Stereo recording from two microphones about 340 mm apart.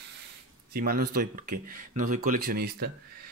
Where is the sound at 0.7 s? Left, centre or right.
Right.